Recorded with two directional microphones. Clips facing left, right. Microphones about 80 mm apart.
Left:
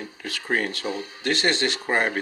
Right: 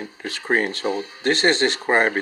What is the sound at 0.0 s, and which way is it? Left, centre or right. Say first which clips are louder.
Speech: right 3 dB; right.